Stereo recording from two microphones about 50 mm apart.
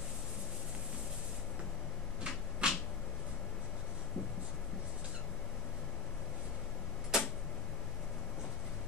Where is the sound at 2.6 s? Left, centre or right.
Centre.